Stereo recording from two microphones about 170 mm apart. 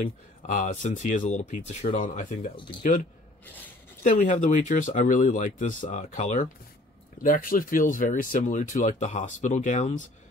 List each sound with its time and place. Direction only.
0.0 s speech: 45° left (ahead or behind)
4.0 s speech: 45° left (ahead or behind)
7.2 s speech: 55° left (ahead or behind)